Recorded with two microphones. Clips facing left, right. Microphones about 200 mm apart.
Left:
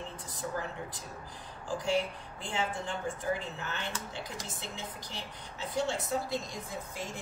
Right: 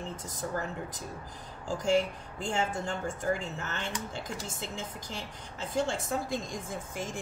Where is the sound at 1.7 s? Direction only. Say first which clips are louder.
Right 4 dB; 45° right (ahead or behind).